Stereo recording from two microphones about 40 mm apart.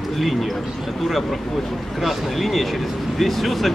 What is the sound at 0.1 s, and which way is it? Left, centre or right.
Speech, centre.